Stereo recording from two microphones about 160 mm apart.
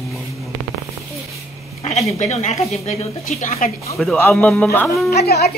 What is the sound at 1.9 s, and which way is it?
Speech, 40° left (ahead or behind).